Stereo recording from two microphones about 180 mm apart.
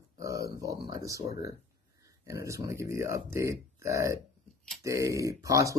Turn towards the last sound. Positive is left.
turn(degrees=-20)  # may be behind; listen again after turning